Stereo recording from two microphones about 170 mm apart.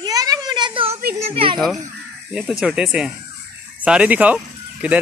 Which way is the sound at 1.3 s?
35° right (ahead or behind).